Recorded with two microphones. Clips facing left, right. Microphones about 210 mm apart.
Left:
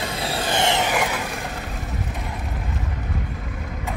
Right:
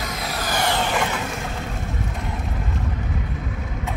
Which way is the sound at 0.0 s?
30° left (ahead or behind).